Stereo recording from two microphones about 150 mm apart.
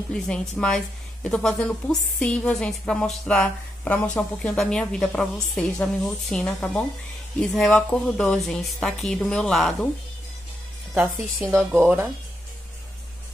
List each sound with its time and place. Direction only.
0.1 s a woman's voice: 5° left (ahead or behind)
11.4 s speech: 15° right (ahead or behind)